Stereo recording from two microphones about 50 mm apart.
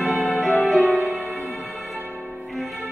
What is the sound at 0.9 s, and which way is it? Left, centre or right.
Music, right.